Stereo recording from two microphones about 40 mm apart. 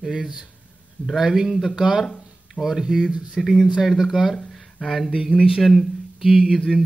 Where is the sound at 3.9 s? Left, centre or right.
Centre.